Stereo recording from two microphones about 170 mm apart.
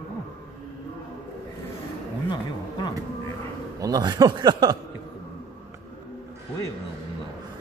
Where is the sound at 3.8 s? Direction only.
20° right (ahead or behind).